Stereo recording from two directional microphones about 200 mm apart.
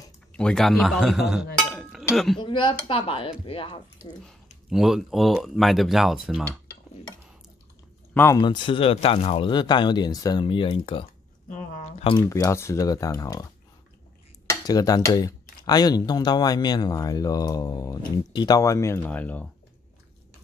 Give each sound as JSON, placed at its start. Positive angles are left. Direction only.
{"t": 0.3, "sound": "speech", "side_deg": 5}
{"t": 2.3, "sound": "speech", "side_deg": 25}
{"t": 4.6, "sound": "speech", "side_deg": 0}
{"t": 8.1, "sound": "speech", "side_deg": 10}
{"t": 8.4, "sound": "speech", "side_deg": 25}
{"t": 11.4, "sound": "a sound", "side_deg": 40}
{"t": 12.2, "sound": "speech", "side_deg": 15}
{"t": 14.5, "sound": "speech", "side_deg": 20}